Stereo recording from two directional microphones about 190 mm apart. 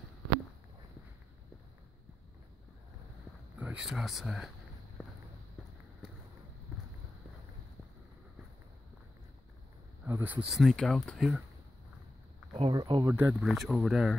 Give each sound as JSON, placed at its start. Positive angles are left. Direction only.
{"t": 3.5, "sound": "speech", "side_deg": -5}
{"t": 10.0, "sound": "speech", "side_deg": -10}
{"t": 10.5, "sound": "speech", "side_deg": 0}
{"t": 12.5, "sound": "speech", "side_deg": -30}
{"t": 13.1, "sound": "speech", "side_deg": -10}